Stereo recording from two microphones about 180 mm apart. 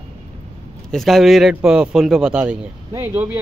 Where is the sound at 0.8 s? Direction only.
Centre (ahead or behind).